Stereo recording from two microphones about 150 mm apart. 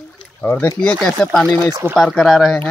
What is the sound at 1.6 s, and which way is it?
Speech, 20° right (ahead or behind).